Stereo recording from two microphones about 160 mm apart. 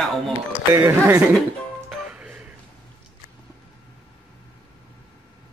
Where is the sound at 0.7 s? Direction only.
20° right (ahead or behind).